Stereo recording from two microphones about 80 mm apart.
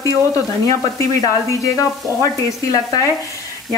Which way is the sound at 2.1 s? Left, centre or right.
Left.